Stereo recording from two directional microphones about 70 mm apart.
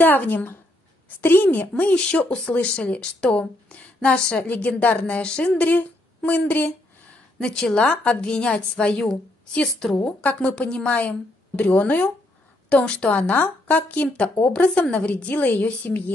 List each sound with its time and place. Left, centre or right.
0.0 s speech: left
7.3 s a woman's voice: centre